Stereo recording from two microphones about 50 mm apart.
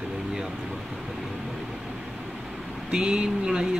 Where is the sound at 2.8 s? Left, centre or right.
Centre.